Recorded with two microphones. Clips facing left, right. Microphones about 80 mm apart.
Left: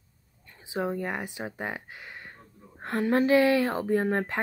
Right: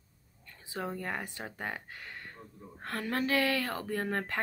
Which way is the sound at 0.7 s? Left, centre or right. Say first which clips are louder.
Left 7 dB; centre.